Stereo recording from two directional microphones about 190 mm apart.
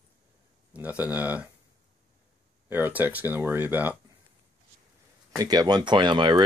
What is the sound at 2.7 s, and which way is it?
Speech, 10° right (ahead or behind).